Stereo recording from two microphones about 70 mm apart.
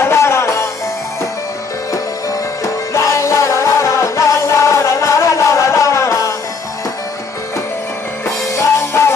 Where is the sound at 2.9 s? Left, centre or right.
Left.